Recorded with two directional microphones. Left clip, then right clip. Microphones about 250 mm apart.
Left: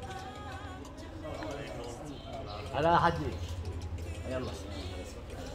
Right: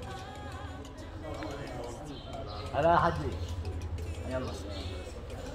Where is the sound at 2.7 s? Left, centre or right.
Left.